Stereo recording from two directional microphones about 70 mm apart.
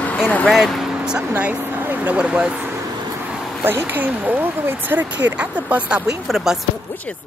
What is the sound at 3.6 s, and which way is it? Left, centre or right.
Speech, right.